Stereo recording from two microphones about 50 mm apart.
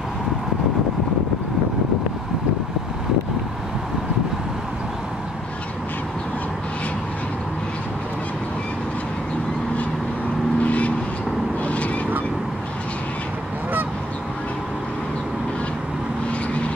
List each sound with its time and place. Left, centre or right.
10.6 s vehicle: left
11.6 s honk: left